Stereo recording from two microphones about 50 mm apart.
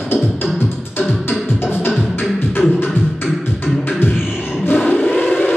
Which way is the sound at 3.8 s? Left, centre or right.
Left.